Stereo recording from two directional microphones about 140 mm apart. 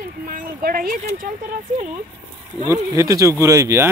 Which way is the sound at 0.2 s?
85° right.